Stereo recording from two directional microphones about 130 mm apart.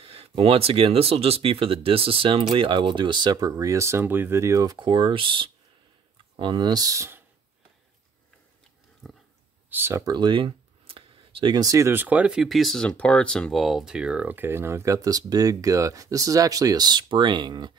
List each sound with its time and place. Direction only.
0.0 s speech: 45° right (ahead or behind); by 4.7 s 25° right (ahead or behind)
4.7 s speech: 35° right (ahead or behind); by 7.2 s 20° right (ahead or behind)
9.0 s a sound: centre (ahead or behind)
9.7 s speech: 15° right (ahead or behind)
10.1 s speech: 35° right (ahead or behind)